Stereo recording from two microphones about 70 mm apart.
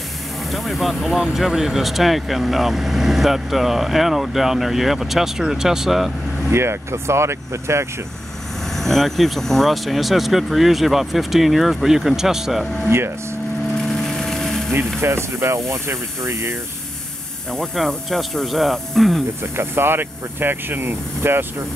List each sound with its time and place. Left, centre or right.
0.5 s speech: centre
6.5 s speech: right
8.7 s speech: centre
12.9 s speech: right
13.8 s a sound: centre
15.0 s speech: right
17.5 s speech: centre
19.4 s speech: right